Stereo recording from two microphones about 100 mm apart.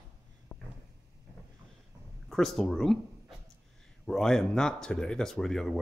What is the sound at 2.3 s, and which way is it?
Speech, centre (ahead or behind).